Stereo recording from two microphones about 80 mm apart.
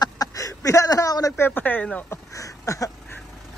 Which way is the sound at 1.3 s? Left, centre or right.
Left.